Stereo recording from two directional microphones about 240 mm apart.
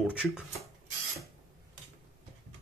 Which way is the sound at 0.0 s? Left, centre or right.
Centre.